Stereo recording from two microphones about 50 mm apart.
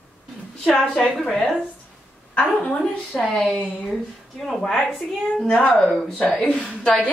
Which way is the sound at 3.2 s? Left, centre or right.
Centre.